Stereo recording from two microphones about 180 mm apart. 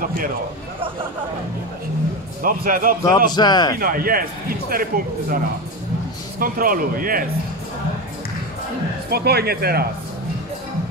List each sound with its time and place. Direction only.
2.4 s speech: 50° right (ahead or behind)
3.3 s a man's voice: 25° left (ahead or behind)
3.7 s speech: 55° right (ahead or behind)
6.4 s speech: 50° right (ahead or behind)
9.1 s speech: 60° right (ahead or behind)